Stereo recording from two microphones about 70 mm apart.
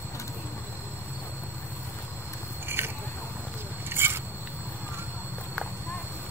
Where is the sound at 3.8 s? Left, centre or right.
Right.